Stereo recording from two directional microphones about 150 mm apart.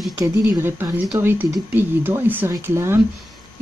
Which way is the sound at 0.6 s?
10° right (ahead or behind).